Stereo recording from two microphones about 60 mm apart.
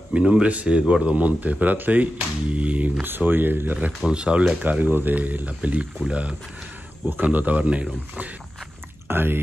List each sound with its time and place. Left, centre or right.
0.1 s speech: centre
4.1 s speech: centre
9.0 s speech: right